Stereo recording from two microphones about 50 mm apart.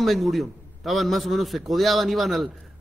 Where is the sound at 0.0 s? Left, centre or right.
Centre.